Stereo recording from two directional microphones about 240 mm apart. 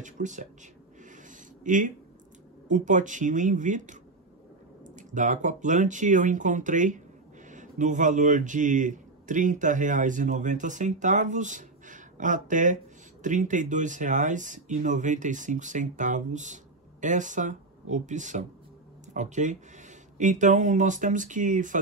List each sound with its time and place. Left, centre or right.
0.0 s speech: right
1.1 s a sound: right
2.7 s speech: right